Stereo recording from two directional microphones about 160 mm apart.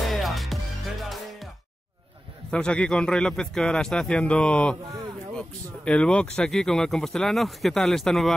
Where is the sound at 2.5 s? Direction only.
5° left (ahead or behind).